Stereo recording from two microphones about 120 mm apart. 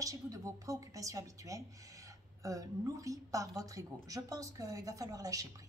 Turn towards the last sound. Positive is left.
turn(degrees=-30)  # may be behind; listen again after turning